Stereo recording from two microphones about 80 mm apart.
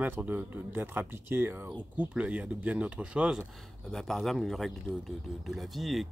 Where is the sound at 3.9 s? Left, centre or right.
Centre.